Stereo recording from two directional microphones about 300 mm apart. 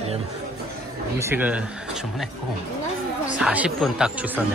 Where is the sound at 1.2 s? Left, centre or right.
Centre.